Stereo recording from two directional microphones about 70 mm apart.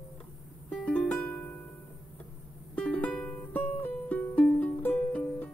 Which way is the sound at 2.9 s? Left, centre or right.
Centre.